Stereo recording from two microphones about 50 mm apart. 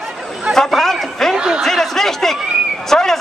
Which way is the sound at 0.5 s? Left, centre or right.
Centre.